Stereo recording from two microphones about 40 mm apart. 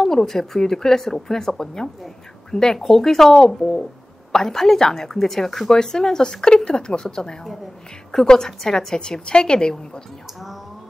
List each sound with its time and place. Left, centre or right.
0.0 s a woman's voice: centre